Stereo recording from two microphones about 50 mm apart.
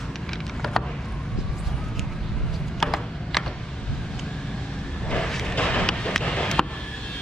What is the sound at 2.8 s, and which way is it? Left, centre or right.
Mechanisms, centre.